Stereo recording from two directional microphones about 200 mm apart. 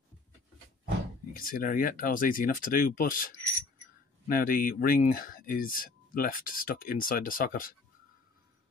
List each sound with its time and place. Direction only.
1.3 s speech: 45° left (ahead or behind)